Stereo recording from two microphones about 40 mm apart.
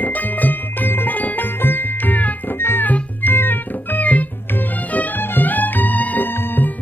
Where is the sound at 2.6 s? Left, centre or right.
Left.